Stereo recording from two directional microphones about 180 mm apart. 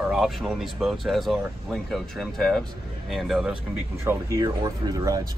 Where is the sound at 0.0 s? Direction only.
Centre (ahead or behind).